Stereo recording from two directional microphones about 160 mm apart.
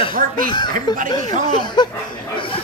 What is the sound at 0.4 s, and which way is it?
Speech, 30° left (ahead or behind).